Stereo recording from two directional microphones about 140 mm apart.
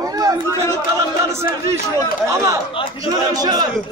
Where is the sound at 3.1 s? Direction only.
25° right (ahead or behind).